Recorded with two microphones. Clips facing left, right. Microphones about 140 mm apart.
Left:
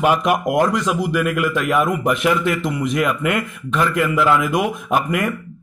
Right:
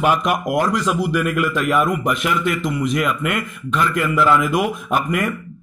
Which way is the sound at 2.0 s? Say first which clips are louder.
Left 2 dB; 30° left (ahead or behind).